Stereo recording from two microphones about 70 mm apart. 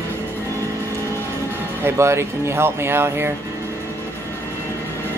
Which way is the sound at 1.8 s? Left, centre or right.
Right.